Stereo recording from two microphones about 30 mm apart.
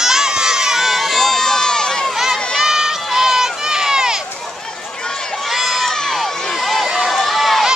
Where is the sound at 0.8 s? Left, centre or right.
Centre; by 2.0 s left.